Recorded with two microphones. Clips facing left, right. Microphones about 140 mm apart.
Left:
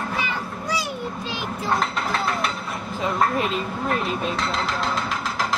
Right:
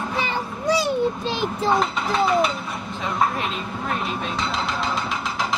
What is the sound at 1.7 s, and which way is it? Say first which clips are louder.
Mechanisms: right 1 dB; centre (ahead or behind).